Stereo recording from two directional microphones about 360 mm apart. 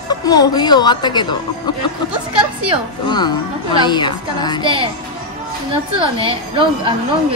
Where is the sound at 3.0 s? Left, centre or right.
Centre.